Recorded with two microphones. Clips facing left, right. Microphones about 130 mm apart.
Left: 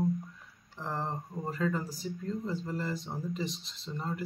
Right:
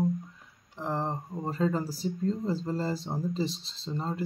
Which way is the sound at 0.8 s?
15° right (ahead or behind).